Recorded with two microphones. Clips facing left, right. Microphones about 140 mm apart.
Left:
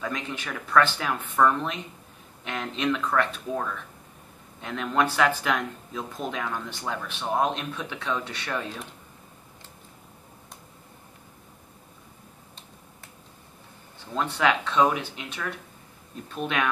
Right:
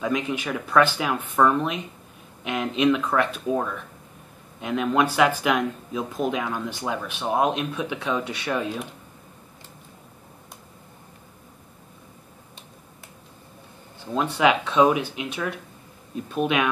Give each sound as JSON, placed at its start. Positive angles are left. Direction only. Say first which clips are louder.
{"t": 0.0, "sound": "speech", "louder": "right 7 dB", "side_deg": -10}
{"t": 14.1, "sound": "speech", "louder": "right 4 dB", "side_deg": -15}